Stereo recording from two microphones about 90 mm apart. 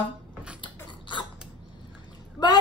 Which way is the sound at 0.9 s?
60° left (ahead or behind).